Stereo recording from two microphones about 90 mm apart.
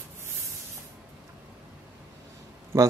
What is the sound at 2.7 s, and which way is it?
Speech, 30° right (ahead or behind).